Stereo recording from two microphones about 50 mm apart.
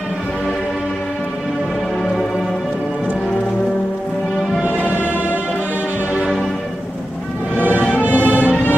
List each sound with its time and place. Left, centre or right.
7.6 s music: right